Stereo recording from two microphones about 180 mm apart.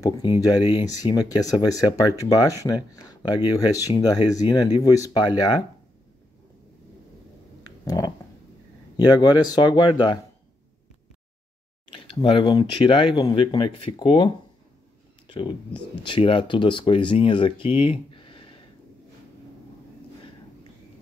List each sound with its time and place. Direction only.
0.0 s speech: 20° left (ahead or behind)
7.8 s a sound: 20° left (ahead or behind)
8.9 s speech: 20° left (ahead or behind)
12.1 s speech: 25° left (ahead or behind)
15.2 s a sound: 25° left (ahead or behind)
16.0 s speech: 30° left (ahead or behind)